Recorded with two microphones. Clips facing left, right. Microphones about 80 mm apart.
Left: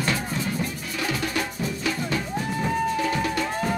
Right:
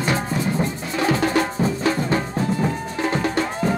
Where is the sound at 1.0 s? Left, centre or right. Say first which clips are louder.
Right 8 dB; right.